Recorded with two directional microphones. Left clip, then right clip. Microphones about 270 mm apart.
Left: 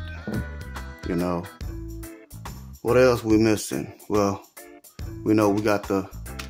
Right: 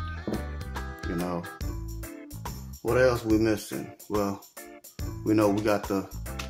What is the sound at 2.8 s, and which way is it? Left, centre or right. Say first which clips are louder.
Speech: left 5 dB; left.